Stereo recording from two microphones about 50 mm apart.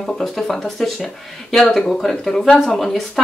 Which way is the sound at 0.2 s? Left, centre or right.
Centre.